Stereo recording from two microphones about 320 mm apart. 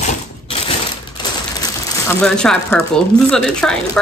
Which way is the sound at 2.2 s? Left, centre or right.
Centre.